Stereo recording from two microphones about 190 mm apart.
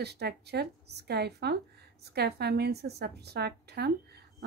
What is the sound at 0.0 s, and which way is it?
A woman's voice, 60° right (ahead or behind).